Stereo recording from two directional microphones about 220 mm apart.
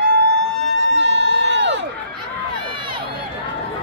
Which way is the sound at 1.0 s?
55° right (ahead or behind).